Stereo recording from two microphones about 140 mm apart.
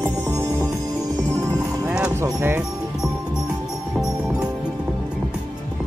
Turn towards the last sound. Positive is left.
turn(degrees=-5)  # may be behind; listen again after turning